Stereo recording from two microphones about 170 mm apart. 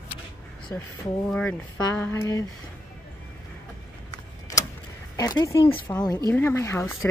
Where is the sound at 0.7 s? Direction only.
15° left (ahead or behind).